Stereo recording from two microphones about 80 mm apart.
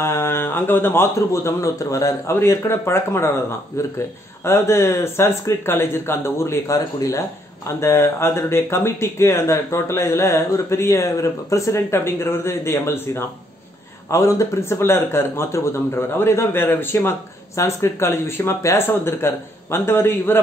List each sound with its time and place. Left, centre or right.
0.0 s speech: left
4.5 s speech: left
14.1 s a man's voice: left